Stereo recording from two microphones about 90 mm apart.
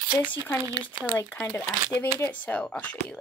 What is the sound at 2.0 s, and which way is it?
Speech, 20° left (ahead or behind).